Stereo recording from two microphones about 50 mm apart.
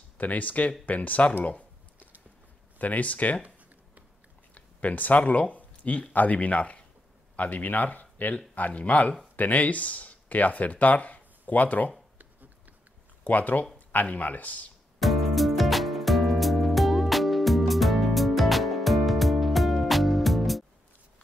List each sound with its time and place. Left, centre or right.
0.2 s speech: left
2.8 s speech: left
4.6 s speech: left
13.2 s speech: left
15.0 s music: centre